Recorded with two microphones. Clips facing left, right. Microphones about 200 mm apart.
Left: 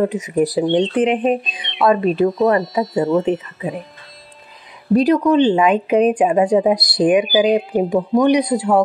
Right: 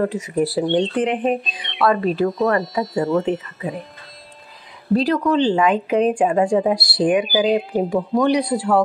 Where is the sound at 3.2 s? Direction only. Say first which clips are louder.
Left 3 dB; 20° left (ahead or behind).